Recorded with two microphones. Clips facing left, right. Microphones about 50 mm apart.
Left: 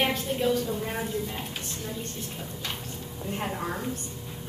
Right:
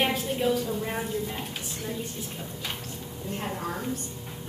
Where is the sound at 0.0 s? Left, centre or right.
Centre.